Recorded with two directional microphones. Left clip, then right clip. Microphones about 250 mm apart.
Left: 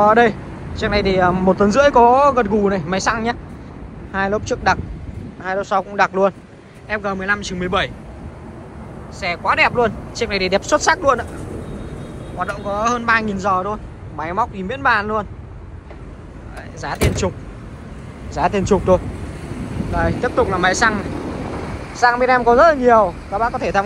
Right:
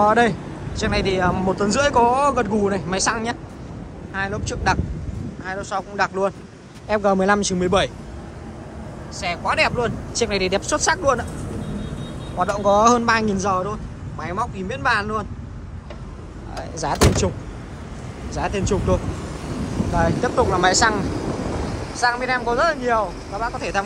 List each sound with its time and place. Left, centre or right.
0.0 s speech: centre
6.9 s speech: centre
9.2 s speech: centre
12.4 s speech: centre
16.7 s speech: centre
18.3 s speech: centre
20.0 s speech: centre
22.0 s speech: centre